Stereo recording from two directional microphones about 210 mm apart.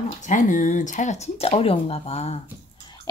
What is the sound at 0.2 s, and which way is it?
Speech, 40° left (ahead or behind).